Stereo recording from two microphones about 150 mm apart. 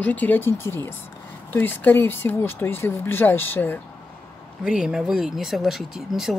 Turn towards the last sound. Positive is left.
turn(degrees=0)  # may be behind; listen again after turning